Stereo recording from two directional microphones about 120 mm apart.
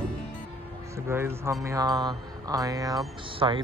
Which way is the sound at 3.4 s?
40° right (ahead or behind).